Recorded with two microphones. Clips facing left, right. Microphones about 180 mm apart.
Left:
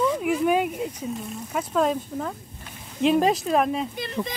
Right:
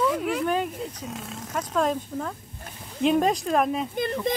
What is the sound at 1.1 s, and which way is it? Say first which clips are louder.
Speech: left 4 dB; 90° right.